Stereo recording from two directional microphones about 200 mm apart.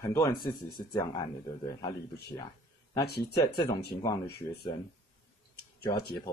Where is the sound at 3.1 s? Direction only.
55° left (ahead or behind).